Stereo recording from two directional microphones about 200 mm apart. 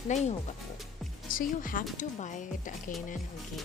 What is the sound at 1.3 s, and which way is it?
Speech, 45° left (ahead or behind).